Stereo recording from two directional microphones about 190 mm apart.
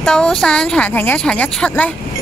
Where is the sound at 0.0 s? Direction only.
5° left (ahead or behind).